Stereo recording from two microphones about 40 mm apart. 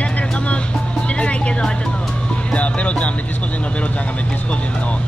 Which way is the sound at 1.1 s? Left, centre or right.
Left.